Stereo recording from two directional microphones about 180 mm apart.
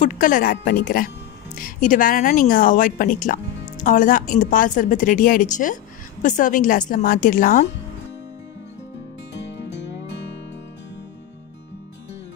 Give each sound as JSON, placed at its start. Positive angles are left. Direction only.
{"t": 0.0, "sound": "a woman's voice", "side_deg": 45}
{"t": 9.5, "sound": "music", "side_deg": 75}